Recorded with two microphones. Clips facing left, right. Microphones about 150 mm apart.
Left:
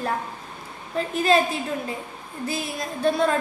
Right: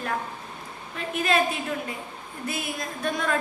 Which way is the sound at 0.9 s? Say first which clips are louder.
Left 4 dB; 35° left (ahead or behind).